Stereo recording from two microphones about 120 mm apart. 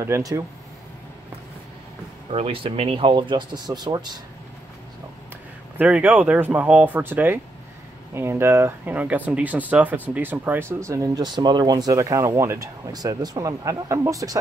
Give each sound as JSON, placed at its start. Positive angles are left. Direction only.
{"t": 0.0, "sound": "speech", "side_deg": -25}
{"t": 2.3, "sound": "speech", "side_deg": -50}
{"t": 5.8, "sound": "speech", "side_deg": -10}